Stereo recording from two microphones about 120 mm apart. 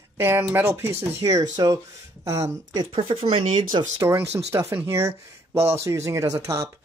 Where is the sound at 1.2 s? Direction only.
30° right (ahead or behind).